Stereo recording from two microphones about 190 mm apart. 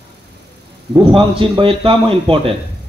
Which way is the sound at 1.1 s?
25° right (ahead or behind).